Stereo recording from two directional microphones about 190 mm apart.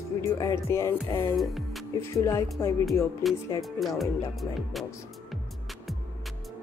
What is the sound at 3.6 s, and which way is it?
Speech, centre (ahead or behind).